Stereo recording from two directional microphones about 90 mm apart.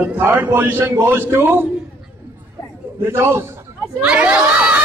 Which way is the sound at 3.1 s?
30° right (ahead or behind).